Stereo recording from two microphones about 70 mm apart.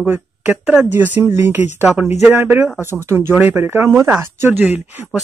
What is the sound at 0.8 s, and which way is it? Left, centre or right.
Speech, right.